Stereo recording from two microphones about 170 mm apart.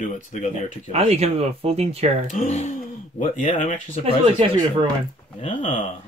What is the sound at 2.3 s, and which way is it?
Speech, 40° left (ahead or behind).